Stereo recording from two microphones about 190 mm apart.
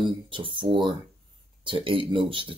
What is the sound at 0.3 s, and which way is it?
Speech, 25° right (ahead or behind).